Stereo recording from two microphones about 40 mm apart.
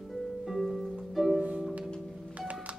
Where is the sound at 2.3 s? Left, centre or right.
Right.